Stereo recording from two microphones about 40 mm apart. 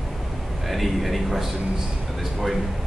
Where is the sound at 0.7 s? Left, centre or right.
Centre.